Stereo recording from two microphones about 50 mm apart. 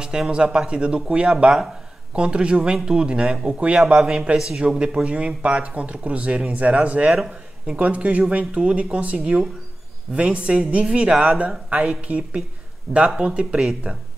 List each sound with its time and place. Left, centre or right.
0.3 s speech: centre
7.1 s speech: centre
7.7 s speech: right